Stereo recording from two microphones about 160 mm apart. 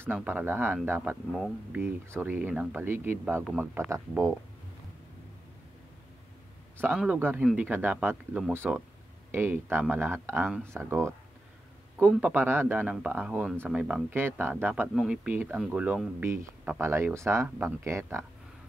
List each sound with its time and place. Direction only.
0.0 s speech: 10° right (ahead or behind)
6.8 s speech: 10° right (ahead or behind)